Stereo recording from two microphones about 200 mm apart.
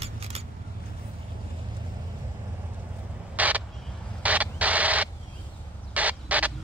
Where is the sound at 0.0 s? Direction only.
30° right (ahead or behind).